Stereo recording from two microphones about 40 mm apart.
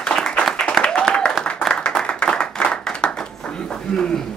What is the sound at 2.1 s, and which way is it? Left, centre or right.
Clapping, left.